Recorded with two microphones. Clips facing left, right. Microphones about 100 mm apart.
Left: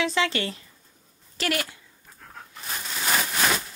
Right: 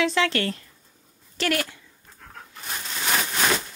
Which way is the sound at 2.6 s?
Centre (ahead or behind).